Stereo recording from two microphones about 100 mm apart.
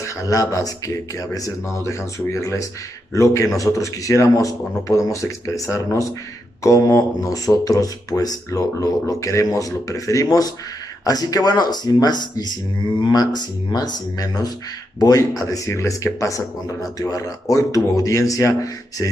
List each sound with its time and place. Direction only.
0.0 s speech: 35° left (ahead or behind)